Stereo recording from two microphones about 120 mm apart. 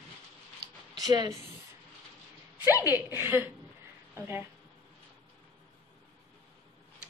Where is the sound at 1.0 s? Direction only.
35° right (ahead or behind).